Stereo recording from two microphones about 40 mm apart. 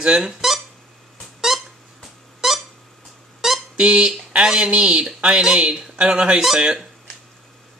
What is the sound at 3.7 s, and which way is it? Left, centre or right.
Speech, right.